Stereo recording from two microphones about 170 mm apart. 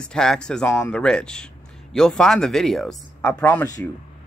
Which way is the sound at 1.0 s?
5° left (ahead or behind).